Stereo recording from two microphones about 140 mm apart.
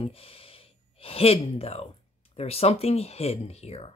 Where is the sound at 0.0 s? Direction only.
40° left (ahead or behind).